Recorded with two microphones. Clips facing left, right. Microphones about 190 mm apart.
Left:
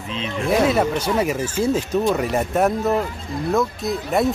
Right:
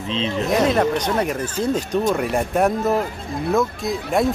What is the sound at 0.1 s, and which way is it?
Speech, 30° right (ahead or behind).